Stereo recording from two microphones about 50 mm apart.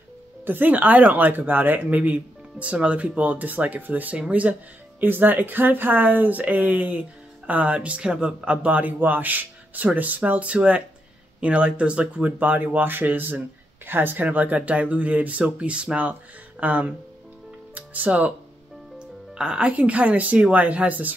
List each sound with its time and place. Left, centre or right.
0.5 s speech: right
5.0 s speech: right
14.2 s speech: right
18.9 s music: centre
19.7 s speech: right